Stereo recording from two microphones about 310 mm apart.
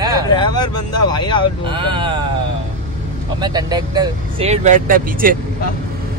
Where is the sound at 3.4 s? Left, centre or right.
Centre.